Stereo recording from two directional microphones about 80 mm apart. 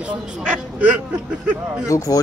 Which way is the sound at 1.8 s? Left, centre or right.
Left.